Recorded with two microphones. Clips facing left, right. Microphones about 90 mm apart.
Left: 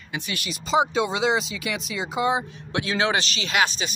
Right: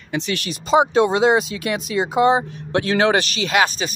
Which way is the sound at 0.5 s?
50° right (ahead or behind).